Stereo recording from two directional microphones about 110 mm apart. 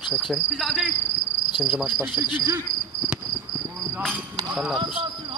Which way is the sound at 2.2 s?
35° right (ahead or behind).